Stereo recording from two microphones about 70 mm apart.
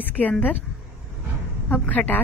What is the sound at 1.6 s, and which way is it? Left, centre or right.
Speech, left.